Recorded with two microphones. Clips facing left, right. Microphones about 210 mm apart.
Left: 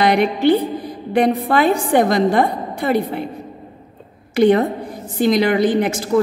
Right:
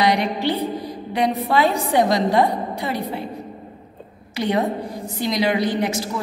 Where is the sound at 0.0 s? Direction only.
55° left (ahead or behind).